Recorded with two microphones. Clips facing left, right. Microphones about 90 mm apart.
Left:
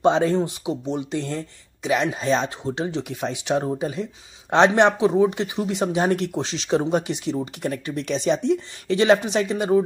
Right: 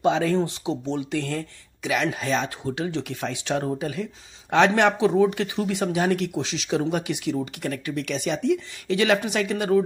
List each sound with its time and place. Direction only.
0.0 s speech: 30° left (ahead or behind)
0.4 s speech: 15° left (ahead or behind)
5.9 s speech: 30° left (ahead or behind)